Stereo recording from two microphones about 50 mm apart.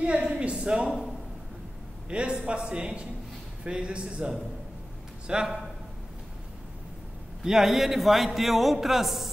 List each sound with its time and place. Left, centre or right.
0.2 s speech: centre
2.0 s a man's voice: right
7.4 s music: centre